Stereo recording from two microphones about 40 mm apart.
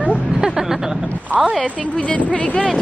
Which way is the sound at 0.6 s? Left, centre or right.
Centre.